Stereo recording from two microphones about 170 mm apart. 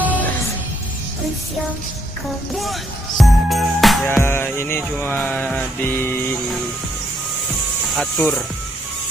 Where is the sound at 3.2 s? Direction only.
Centre (ahead or behind).